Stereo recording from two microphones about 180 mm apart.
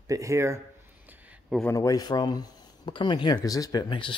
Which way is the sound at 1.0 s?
10° right (ahead or behind).